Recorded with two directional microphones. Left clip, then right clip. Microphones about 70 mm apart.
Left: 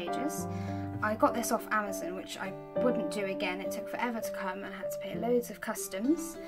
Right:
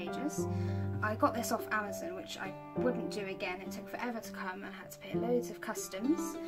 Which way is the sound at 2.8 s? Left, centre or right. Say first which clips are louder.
Left 5 dB; left.